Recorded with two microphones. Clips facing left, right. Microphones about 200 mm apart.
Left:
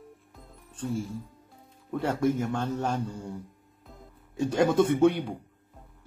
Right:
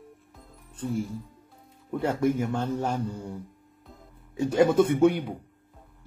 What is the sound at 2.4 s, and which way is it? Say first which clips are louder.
Speech: right 1 dB; 10° right (ahead or behind).